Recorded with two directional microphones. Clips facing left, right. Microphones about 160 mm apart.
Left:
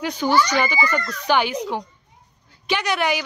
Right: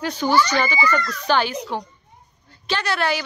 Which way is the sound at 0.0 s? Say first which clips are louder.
Even; 15° left (ahead or behind).